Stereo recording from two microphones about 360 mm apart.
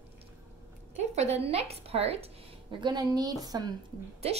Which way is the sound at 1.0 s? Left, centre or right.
Centre.